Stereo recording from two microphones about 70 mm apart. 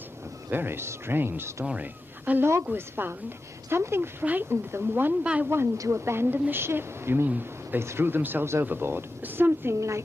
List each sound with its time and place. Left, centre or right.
0.5 s a woman's voice: right
1.7 s a woman's voice: right
4.2 s a woman's voice: right
5.2 s a woman's voice: centre
5.8 s a woman's voice: right
9.8 s speech: right